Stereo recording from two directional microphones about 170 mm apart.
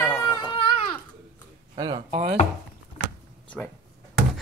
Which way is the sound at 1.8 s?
25° right (ahead or behind).